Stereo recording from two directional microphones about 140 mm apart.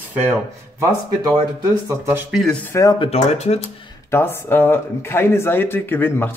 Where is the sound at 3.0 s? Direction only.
50° left (ahead or behind).